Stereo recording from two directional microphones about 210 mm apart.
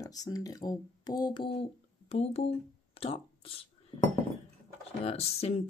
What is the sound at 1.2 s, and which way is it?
Speech, 25° left (ahead or behind).